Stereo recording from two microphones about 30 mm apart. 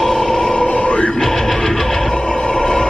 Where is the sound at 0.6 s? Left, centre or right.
Left.